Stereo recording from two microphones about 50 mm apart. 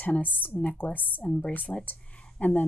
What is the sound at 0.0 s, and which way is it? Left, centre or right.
Speech, left.